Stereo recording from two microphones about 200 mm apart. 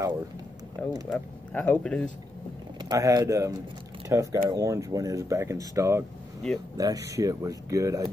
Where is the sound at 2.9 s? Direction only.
20° right (ahead or behind).